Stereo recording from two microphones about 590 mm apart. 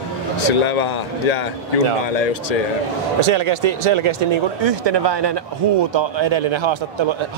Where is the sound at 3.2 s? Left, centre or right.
Right.